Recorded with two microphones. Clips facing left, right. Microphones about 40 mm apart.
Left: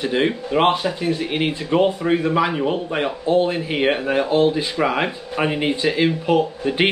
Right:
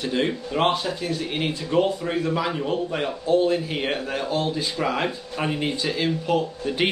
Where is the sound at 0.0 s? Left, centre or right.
Left.